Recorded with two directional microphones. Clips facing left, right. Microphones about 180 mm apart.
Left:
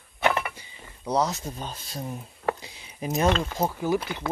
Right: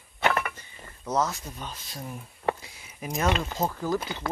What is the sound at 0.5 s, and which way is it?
Speech, 10° left (ahead or behind).